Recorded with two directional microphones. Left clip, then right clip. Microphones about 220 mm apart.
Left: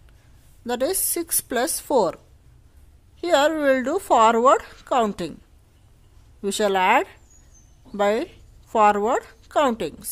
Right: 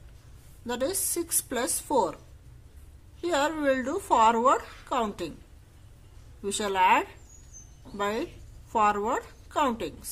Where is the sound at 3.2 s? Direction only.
40° left (ahead or behind).